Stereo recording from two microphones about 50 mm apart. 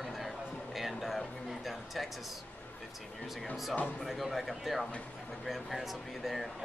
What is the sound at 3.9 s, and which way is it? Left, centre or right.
Speech, centre.